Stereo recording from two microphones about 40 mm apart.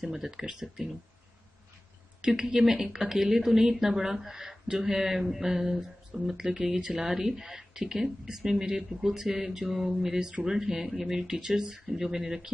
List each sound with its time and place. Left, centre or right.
0.0 s speech: centre
2.2 s speech: right